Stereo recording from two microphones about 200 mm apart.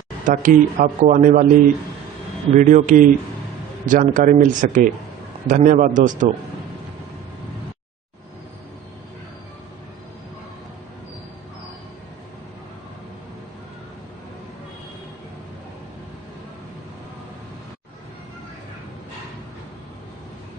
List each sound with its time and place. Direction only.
0.2 s speech: 40° right (ahead or behind)
2.5 s speech: 40° right (ahead or behind)